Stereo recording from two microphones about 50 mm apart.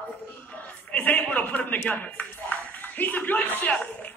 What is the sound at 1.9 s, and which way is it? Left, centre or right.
A man's voice, left.